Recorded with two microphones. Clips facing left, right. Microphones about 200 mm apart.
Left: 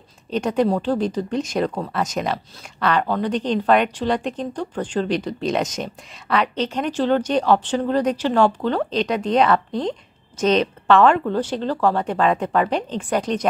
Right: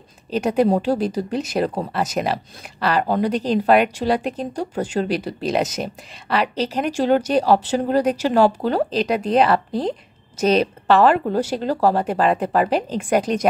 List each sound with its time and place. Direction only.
0.3 s a woman's voice: 5° right (ahead or behind)